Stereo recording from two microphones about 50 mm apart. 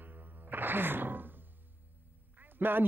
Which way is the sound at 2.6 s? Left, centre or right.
Right.